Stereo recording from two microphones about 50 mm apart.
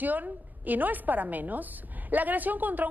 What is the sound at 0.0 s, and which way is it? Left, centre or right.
A woman's voice, right.